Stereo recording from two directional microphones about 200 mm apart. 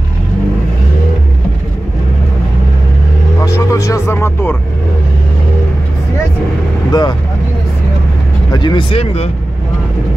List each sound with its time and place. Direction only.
3.4 s music: 15° left (ahead or behind)
6.9 s vehicle: 20° left (ahead or behind)
8.5 s vehicle: 20° left (ahead or behind)